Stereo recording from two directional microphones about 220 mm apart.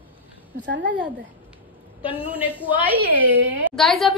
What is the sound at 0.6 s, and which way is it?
Speech, 55° right (ahead or behind).